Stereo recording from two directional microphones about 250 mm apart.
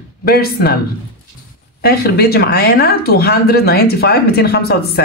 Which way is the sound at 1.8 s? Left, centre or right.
Left.